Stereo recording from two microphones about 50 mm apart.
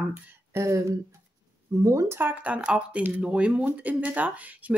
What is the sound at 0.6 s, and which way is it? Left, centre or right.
Speech, right.